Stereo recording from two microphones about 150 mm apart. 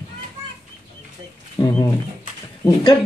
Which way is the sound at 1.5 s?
20° left (ahead or behind).